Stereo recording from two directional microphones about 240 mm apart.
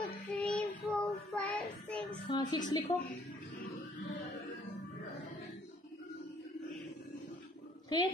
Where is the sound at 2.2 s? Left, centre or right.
Centre.